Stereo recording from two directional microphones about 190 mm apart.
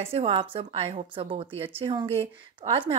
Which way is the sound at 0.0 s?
30° right (ahead or behind).